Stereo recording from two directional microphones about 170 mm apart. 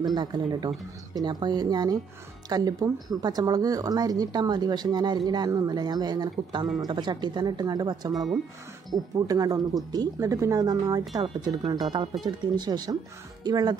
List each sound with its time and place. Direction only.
0.0 s speech: 25° right (ahead or behind)
8.1 s speech: centre (ahead or behind)
8.9 s speech: 20° right (ahead or behind)